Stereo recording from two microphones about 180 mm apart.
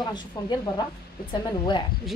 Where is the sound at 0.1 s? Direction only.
25° left (ahead or behind).